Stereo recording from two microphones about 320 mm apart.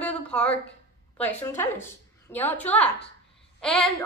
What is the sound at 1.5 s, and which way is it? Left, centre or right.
A woman's voice, centre.